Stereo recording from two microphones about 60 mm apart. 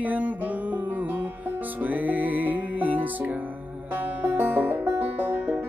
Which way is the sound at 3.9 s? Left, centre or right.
Right.